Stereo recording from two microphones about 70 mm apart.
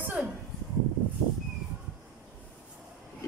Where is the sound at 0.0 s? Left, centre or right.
Right.